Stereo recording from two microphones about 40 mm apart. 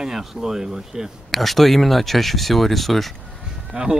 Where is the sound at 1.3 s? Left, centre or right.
Centre.